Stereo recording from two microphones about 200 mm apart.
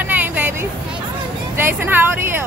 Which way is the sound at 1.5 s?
10° right (ahead or behind).